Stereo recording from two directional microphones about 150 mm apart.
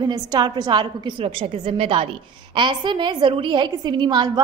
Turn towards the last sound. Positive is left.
turn(degrees=-30)  # may be behind; listen again after turning